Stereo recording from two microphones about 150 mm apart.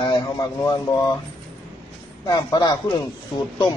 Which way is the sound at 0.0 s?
30° left (ahead or behind).